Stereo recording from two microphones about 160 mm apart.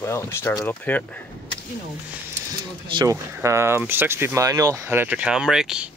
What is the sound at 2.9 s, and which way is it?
Speech, 30° right (ahead or behind).